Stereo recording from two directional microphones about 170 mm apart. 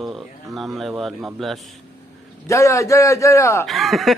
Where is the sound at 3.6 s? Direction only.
Centre (ahead or behind).